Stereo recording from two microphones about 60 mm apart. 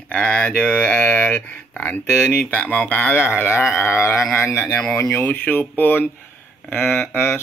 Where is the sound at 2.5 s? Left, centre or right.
Left.